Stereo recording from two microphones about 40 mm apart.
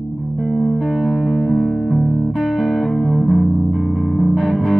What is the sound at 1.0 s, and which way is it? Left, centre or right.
Music, centre.